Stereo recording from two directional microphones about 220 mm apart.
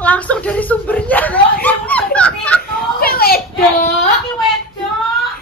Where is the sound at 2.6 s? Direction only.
45° left (ahead or behind).